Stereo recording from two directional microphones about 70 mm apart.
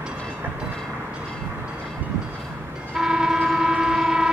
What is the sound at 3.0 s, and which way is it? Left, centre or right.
Train, centre.